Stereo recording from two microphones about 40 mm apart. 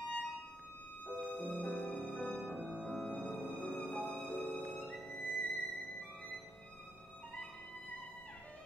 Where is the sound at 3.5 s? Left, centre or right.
Left.